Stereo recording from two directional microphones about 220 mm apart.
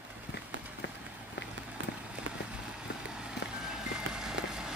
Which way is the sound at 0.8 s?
55° left (ahead or behind).